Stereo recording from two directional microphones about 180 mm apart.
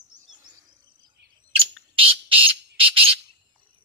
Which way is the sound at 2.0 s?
30° right (ahead or behind).